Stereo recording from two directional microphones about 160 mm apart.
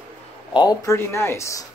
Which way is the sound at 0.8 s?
15° left (ahead or behind).